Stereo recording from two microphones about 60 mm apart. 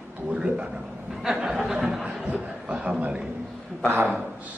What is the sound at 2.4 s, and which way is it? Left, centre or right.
Speech, centre.